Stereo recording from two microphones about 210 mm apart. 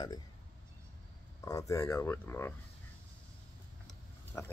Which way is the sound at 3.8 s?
10° left (ahead or behind).